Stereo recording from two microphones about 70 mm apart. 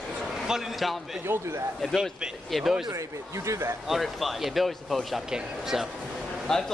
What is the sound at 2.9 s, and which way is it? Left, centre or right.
Speech, right.